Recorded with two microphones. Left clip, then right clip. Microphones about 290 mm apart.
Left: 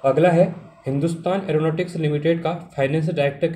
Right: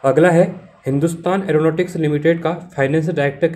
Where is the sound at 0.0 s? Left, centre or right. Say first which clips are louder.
Right 3 dB; centre.